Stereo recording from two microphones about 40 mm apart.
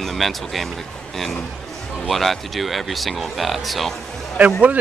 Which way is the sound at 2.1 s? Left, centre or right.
Centre.